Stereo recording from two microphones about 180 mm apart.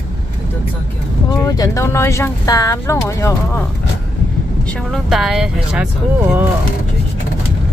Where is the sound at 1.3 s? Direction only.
20° left (ahead or behind).